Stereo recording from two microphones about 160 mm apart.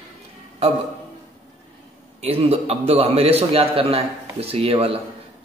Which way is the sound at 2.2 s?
40° right (ahead or behind).